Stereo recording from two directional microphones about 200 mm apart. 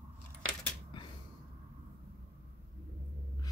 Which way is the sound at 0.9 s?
25° left (ahead or behind).